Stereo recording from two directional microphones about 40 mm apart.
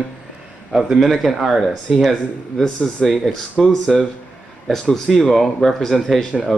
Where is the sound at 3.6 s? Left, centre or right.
Centre.